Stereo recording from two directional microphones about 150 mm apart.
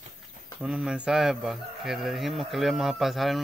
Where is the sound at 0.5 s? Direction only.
5° right (ahead or behind).